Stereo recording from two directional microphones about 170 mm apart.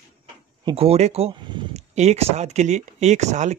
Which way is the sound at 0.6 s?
35° right (ahead or behind).